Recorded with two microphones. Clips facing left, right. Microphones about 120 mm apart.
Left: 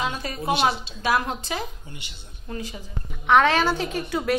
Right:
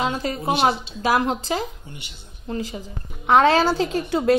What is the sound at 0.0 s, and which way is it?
A woman's voice, 30° right (ahead or behind).